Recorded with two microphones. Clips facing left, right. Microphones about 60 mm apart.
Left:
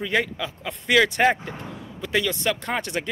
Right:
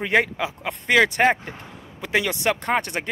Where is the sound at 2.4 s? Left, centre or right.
Right.